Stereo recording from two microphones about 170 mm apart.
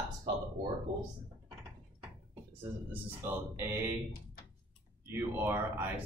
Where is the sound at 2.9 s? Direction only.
15° right (ahead or behind).